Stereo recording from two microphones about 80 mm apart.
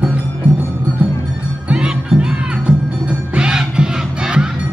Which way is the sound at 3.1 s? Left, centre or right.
Centre.